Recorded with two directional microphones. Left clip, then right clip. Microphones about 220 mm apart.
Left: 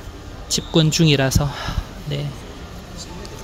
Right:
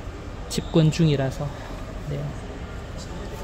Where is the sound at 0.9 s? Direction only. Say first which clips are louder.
Left 7 dB; 20° left (ahead or behind).